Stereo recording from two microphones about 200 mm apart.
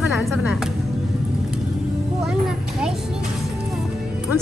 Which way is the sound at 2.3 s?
5° right (ahead or behind).